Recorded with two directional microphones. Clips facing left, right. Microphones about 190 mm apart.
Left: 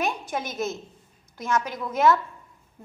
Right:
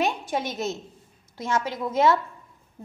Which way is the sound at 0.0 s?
25° right (ahead or behind).